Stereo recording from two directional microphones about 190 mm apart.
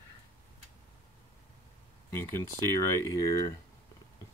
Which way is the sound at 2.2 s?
15° left (ahead or behind).